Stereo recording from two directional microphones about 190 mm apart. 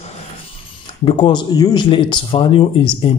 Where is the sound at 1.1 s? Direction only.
25° left (ahead or behind).